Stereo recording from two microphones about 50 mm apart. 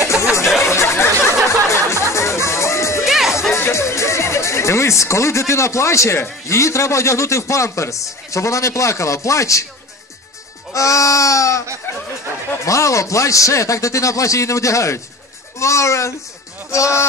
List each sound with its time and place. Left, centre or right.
0.0 s music: left
0.7 s a sound: left
1.7 s music: left
3.1 s music: centre
3.5 s a sound: left
6.4 s a man's voice: left
10.7 s a man's voice: left
12.6 s a man's voice: left
15.6 s a man's voice: left